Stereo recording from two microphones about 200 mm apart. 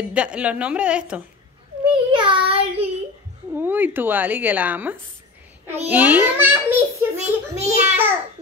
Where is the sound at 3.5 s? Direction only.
10° right (ahead or behind).